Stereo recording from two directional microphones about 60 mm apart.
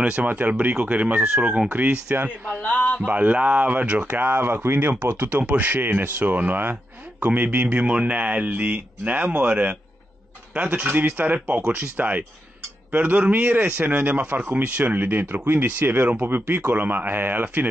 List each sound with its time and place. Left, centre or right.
0.0 s speech: right
2.6 s speech: left
3.1 s speech: right